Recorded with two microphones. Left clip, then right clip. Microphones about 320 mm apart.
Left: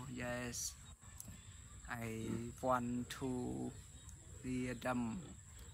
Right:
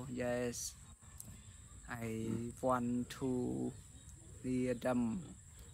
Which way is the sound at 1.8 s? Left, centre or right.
Centre.